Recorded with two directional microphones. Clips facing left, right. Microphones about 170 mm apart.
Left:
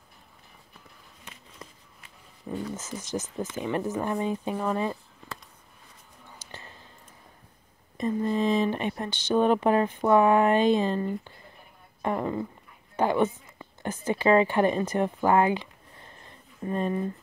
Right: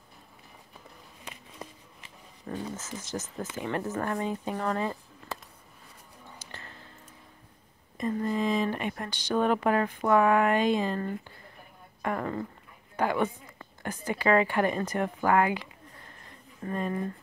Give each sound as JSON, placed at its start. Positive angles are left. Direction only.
{"t": 1.2, "sound": "a sound", "side_deg": -20}
{"t": 2.4, "sound": "speech", "side_deg": 20}
{"t": 8.0, "sound": "speech", "side_deg": 25}